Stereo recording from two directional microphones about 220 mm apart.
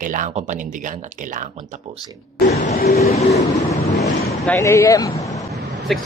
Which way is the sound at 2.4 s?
30° left (ahead or behind).